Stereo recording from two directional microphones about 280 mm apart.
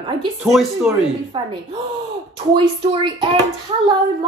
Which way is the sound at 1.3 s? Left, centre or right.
Centre.